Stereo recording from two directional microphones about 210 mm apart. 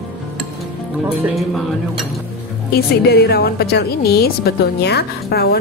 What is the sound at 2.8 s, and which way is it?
A woman's voice, 50° left (ahead or behind).